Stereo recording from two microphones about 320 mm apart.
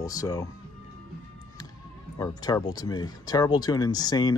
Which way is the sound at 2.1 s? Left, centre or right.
Centre.